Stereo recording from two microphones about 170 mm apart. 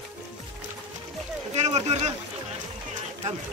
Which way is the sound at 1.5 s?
40° right (ahead or behind).